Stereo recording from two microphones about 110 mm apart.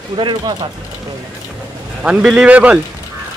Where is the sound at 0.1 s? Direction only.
45° right (ahead or behind).